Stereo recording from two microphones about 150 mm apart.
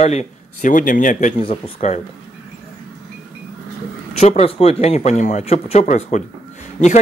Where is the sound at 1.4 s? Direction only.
45° left (ahead or behind).